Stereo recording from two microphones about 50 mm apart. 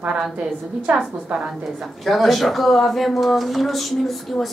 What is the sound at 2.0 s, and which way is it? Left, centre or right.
A man's voice, centre.